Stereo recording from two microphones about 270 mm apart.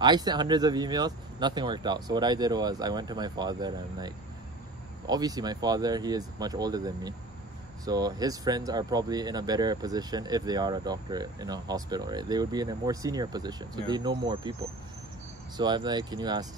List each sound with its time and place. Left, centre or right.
0.0 s speech: centre